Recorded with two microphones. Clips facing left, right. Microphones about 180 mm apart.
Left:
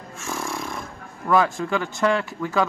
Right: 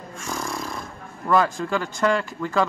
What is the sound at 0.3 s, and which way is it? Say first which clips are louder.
Snoring: even; centre (ahead or behind).